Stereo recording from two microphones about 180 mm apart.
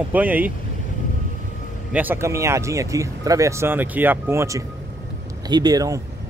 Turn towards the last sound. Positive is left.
turn(degrees=-20)  # may be behind; listen again after turning